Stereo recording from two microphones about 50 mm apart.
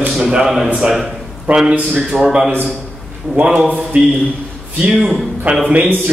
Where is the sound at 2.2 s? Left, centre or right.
Centre.